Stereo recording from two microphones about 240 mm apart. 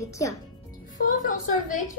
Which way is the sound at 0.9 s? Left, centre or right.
Left.